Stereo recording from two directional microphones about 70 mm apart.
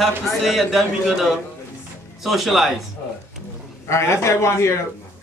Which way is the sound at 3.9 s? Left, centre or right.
Left.